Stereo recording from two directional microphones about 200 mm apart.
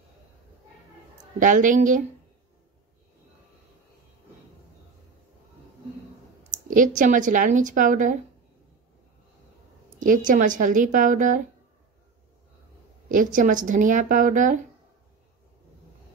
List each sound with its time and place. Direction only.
1.4 s speech: 40° right (ahead or behind)
6.7 s speech: 40° right (ahead or behind)
9.9 s speech: 40° right (ahead or behind)
13.1 s speech: 40° right (ahead or behind)